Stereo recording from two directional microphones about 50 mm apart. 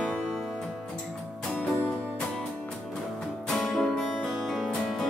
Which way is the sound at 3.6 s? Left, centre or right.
Centre.